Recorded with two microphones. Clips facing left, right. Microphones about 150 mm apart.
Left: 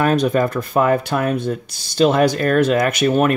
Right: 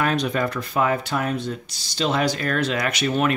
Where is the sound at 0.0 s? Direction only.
45° left (ahead or behind).